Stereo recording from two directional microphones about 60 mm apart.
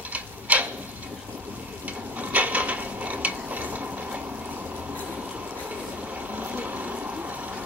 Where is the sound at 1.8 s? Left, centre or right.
Right.